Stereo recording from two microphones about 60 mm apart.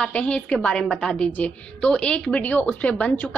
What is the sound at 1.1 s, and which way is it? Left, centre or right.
A woman's voice, centre.